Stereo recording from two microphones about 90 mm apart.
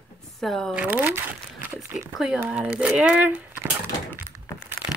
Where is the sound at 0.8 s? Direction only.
20° right (ahead or behind).